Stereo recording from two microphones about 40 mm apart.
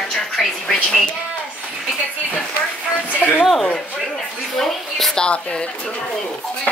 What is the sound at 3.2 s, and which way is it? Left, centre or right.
Speech, left.